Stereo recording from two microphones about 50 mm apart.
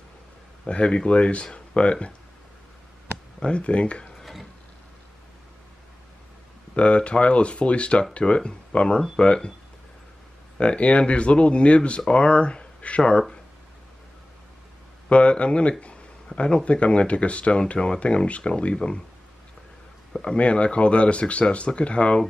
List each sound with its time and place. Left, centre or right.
0.7 s speech: left
3.3 s speech: left
4.2 s a sound: centre
6.7 s speech: left
10.6 s speech: left
15.0 s speech: left
20.2 s speech: left